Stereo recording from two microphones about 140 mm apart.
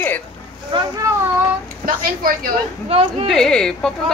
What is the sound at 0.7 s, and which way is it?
Speech, 35° right (ahead or behind).